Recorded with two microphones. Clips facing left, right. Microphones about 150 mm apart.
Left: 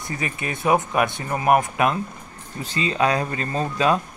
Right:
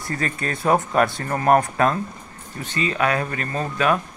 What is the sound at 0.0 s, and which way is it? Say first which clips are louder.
Speech: right 2 dB; 15° left (ahead or behind).